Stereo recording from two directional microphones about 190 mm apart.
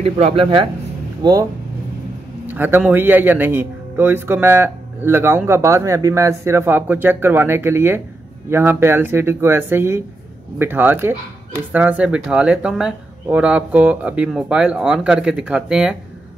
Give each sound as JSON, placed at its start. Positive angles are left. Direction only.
{"t": 0.0, "sound": "speech", "side_deg": -30}
{"t": 2.4, "sound": "a man's voice", "side_deg": -10}